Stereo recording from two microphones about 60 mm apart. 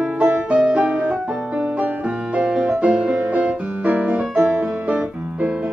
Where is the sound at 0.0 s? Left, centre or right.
Centre.